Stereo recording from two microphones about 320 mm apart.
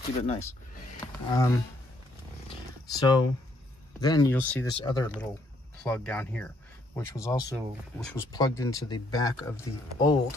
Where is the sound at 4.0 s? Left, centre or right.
Centre.